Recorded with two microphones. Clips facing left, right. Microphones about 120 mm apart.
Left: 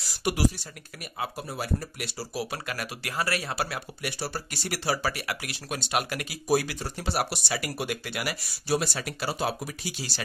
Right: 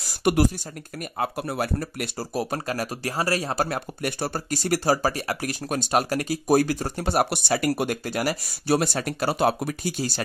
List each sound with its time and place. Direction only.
0.0 s a sound: 55° right (ahead or behind)
1.1 s speech: 55° right (ahead or behind)
8.6 s speech: 55° right (ahead or behind)